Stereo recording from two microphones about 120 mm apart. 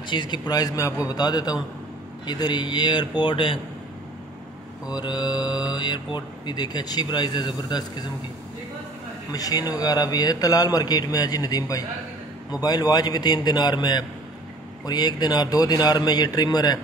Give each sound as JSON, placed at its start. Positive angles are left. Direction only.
{"t": 0.1, "sound": "speech", "side_deg": 40}
{"t": 4.8, "sound": "speech", "side_deg": 35}
{"t": 9.3, "sound": "speech", "side_deg": 30}